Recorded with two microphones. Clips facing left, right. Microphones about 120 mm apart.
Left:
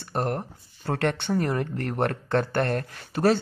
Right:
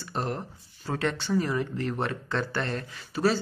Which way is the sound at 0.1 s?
55° left (ahead or behind).